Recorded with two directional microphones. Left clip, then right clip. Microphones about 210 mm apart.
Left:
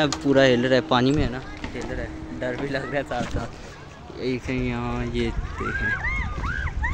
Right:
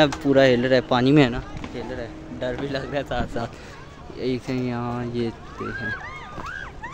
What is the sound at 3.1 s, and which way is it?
Speech, 25° right (ahead or behind).